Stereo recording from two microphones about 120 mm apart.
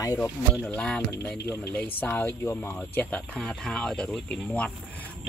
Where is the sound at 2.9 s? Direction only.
10° left (ahead or behind).